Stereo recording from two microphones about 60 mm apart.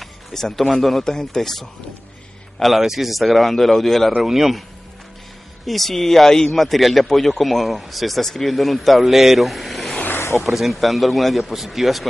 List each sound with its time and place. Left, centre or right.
0.0 s speech: centre
5.7 s speech: centre
10.1 s a sound: left
10.4 s speech: centre